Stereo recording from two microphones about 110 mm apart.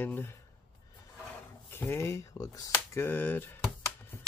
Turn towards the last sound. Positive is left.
turn(degrees=15)  # may be behind; listen again after turning